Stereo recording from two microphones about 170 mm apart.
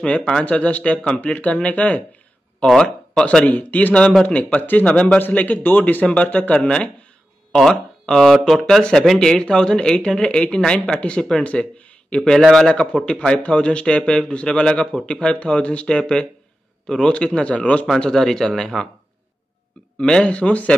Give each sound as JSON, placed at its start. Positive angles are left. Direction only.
{"t": 0.0, "sound": "speech", "side_deg": 5}
{"t": 20.0, "sound": "speech", "side_deg": 5}